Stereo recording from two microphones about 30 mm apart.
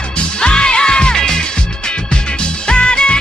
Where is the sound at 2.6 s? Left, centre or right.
Left.